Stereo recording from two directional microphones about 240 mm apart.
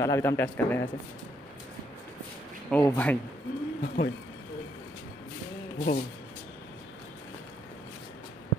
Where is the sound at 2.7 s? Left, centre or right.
Centre.